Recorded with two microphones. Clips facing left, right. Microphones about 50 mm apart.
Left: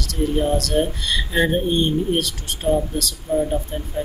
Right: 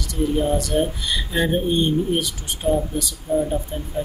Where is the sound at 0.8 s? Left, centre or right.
Centre.